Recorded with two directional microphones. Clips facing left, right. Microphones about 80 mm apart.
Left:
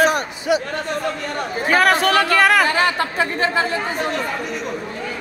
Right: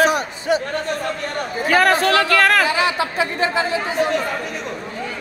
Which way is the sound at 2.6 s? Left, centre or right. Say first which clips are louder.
Left 1 dB; left.